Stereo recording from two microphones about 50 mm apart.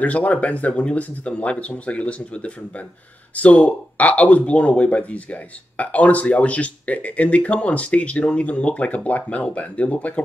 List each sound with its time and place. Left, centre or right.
0.0 s speech: left